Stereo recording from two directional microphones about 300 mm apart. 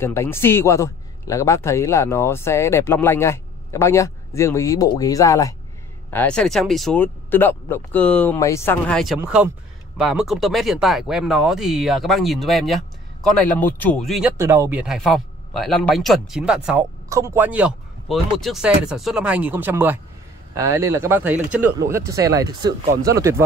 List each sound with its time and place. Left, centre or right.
0.0 s a man's voice: centre